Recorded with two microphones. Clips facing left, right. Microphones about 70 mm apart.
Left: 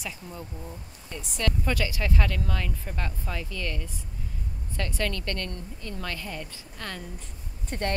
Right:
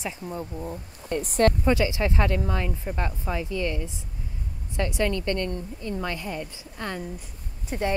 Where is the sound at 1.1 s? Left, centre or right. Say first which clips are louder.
Right 10 dB; right.